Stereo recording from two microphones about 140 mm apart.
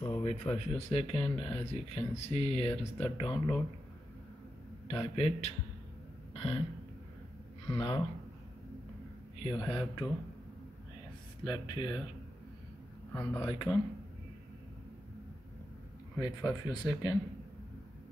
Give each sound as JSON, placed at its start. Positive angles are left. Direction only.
{"t": 0.2, "sound": "a sound", "side_deg": 55}
{"t": 0.7, "sound": "speech", "side_deg": 45}
{"t": 4.8, "sound": "speech", "side_deg": 45}
{"t": 6.3, "sound": "a sound", "side_deg": 45}
{"t": 7.6, "sound": "speech", "side_deg": 35}
{"t": 9.4, "sound": "speech", "side_deg": 35}
{"t": 11.4, "sound": "speech", "side_deg": 35}
{"t": 13.1, "sound": "speech", "side_deg": 15}
{"t": 13.4, "sound": "speech", "side_deg": 35}
{"t": 16.2, "sound": "speech", "side_deg": 30}